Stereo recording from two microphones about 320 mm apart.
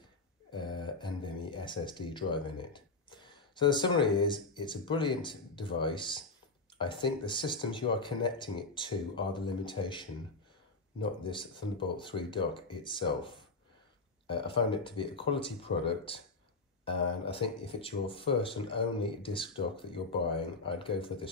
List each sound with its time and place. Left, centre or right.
0.5 s a sound: centre
4.2 s speech: centre
14.5 s speech: centre